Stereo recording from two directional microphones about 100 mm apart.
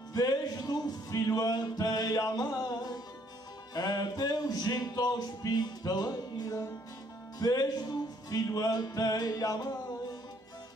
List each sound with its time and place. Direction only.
0.1 s music: 40° left (ahead or behind)